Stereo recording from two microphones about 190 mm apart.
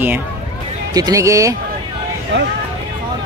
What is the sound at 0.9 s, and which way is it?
Speech, 20° right (ahead or behind).